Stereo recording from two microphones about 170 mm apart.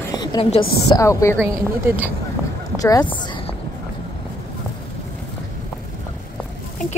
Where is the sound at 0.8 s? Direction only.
20° left (ahead or behind).